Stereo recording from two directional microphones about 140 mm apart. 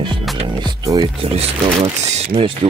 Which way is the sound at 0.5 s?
30° right (ahead or behind).